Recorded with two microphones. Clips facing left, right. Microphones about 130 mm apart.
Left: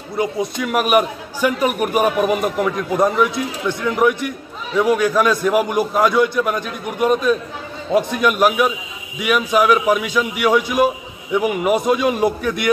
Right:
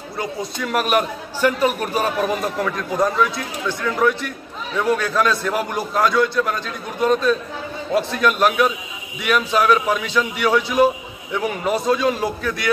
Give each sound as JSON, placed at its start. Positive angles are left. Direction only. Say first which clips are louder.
{"t": 0.2, "sound": "a man's voice", "louder": "left 5 dB", "side_deg": 20}